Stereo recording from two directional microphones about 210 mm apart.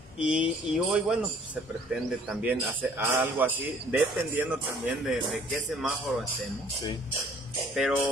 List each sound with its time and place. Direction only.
0.2 s a man's voice: 5° right (ahead or behind)
7.7 s a man's voice: centre (ahead or behind)